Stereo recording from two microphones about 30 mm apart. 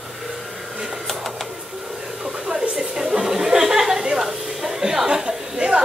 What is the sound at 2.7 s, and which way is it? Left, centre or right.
Chuckle, centre.